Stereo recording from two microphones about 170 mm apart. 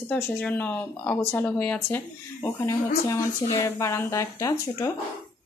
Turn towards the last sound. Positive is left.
turn(degrees=15)  # may be behind; listen again after turning